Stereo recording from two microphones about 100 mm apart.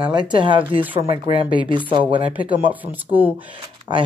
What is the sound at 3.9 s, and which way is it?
Speech, 40° right (ahead or behind).